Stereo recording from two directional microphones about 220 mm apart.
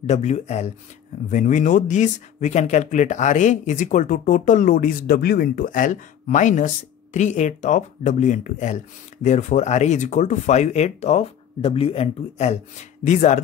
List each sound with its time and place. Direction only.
0.0 s speech: 30° left (ahead or behind)